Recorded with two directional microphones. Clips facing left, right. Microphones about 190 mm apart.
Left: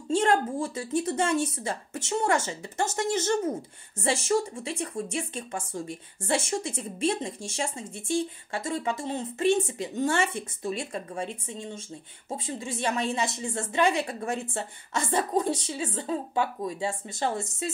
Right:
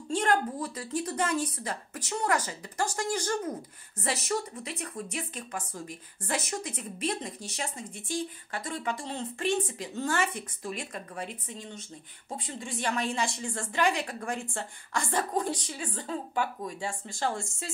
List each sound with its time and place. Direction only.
0.1 s a woman's voice: 25° left (ahead or behind)